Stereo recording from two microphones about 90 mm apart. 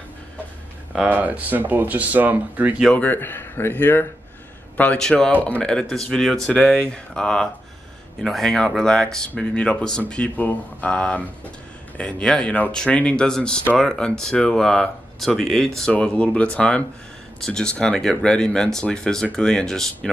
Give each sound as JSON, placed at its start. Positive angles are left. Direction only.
{"t": 1.0, "sound": "speech", "side_deg": -20}
{"t": 2.9, "sound": "speech", "side_deg": 20}
{"t": 4.9, "sound": "speech", "side_deg": 5}
{"t": 6.5, "sound": "speech", "side_deg": 15}